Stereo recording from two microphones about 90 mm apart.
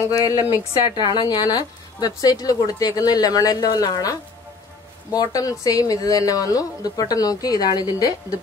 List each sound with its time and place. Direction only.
0.2 s speech: 25° right (ahead or behind)
0.9 s speech: 55° left (ahead or behind)